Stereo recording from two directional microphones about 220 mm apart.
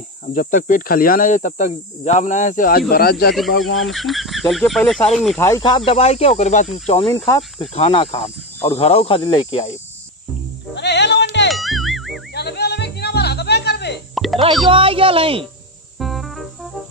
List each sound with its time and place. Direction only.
0.3 s speech: 35° left (ahead or behind)
3.6 s speech: centre (ahead or behind)
5.4 s speech: 20° left (ahead or behind)
10.7 s music: 50° left (ahead or behind)
11.5 s ding: centre (ahead or behind)
12.4 s music: 50° left (ahead or behind)
14.1 s music: centre (ahead or behind)
14.7 s speech: 25° right (ahead or behind)
16.0 s music: centre (ahead or behind)